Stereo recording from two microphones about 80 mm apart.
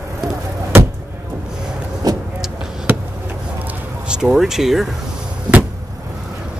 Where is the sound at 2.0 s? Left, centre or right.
Right.